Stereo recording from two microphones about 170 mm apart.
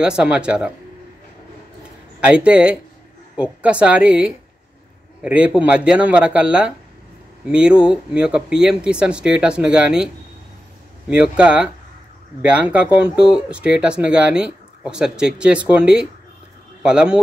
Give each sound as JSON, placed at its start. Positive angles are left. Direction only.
{"t": 0.0, "sound": "speech", "side_deg": -5}
{"t": 2.1, "sound": "speech", "side_deg": -5}
{"t": 11.1, "sound": "speech", "side_deg": -5}